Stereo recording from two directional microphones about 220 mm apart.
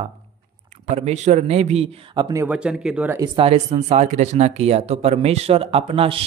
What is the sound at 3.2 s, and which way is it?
Speech, 25° right (ahead or behind).